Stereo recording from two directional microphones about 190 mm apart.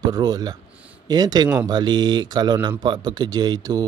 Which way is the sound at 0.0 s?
20° right (ahead or behind).